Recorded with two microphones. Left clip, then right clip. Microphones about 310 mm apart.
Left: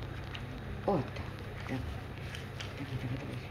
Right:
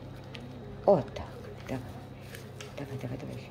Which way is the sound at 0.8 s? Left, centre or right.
Centre.